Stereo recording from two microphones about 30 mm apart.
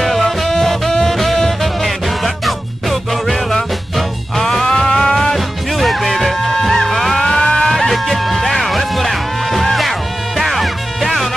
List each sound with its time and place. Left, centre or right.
0.0 s music: centre
4.6 s music: left
5.3 s music: centre
7.3 s music: left
7.7 s music: centre